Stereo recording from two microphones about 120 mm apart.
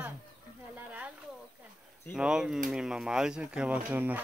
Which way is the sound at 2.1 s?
5° right (ahead or behind).